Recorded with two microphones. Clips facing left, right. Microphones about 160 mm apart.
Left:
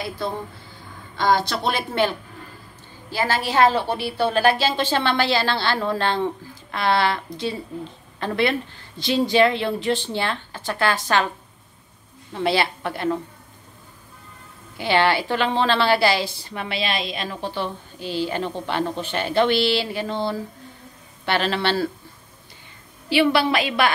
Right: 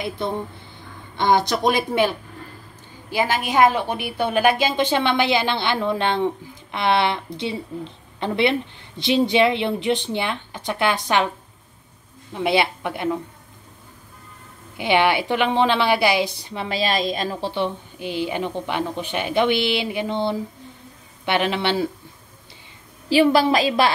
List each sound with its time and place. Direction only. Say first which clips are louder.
0.2 s a woman's voice: right 2 dB; 20° right (ahead or behind)
12.4 s a woman's voice: right 1 dB; 20° right (ahead or behind)
14.8 s a woman's voice: right 1 dB; 20° right (ahead or behind)
16.6 s a woman's voice: right 4 dB; 40° right (ahead or behind)
17.9 s a woman's voice: left 4 dB; 15° right (ahead or behind)
23.0 s a woman's voice: right 3 dB; 35° right (ahead or behind)